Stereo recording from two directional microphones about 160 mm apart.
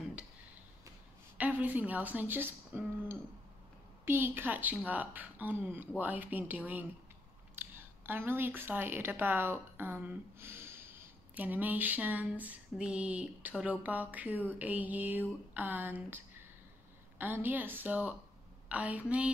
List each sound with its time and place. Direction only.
1.4 s a woman's voice: 10° right (ahead or behind)